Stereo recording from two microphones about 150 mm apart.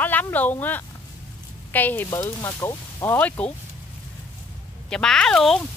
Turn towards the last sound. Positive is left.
turn(degrees=5)  # may be behind; listen again after turning